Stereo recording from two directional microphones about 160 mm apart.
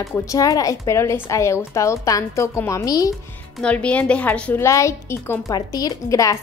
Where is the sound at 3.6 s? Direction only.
5° left (ahead or behind).